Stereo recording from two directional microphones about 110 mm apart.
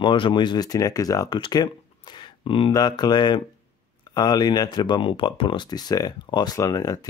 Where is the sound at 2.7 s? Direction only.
40° left (ahead or behind).